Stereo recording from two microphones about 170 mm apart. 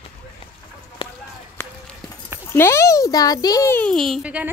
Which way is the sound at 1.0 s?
35° left (ahead or behind).